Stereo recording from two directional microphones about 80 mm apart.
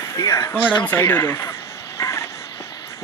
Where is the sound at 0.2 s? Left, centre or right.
Left.